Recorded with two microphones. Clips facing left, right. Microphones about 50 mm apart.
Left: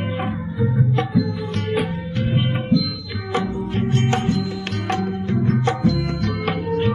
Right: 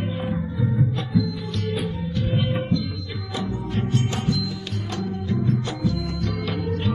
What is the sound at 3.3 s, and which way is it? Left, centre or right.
Music, left.